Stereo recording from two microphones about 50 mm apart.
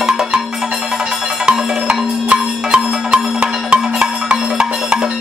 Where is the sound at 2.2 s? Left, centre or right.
Right.